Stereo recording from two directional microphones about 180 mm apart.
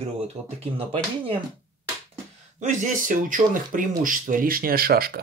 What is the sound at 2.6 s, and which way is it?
Speech, 45° right (ahead or behind).